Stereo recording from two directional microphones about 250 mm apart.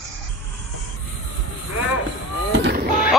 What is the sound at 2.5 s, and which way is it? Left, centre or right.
Vehicle, right.